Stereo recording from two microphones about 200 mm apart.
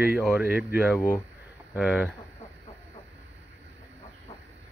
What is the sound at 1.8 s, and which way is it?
Speech, 5° right (ahead or behind).